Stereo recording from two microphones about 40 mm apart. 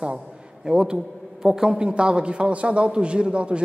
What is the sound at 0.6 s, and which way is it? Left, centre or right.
A man's voice, centre.